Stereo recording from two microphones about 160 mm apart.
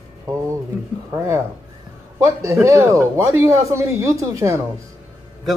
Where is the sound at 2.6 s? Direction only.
15° right (ahead or behind).